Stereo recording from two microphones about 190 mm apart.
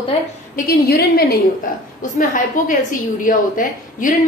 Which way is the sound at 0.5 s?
55° left (ahead or behind).